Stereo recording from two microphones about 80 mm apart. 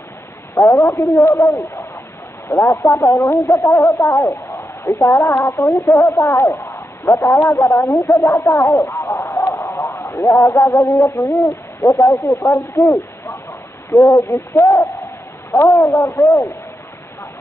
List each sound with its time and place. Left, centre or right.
0.6 s speech: left
14.0 s speech: left